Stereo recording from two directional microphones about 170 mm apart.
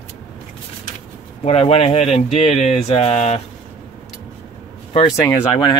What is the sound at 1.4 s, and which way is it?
Speech, 35° left (ahead or behind).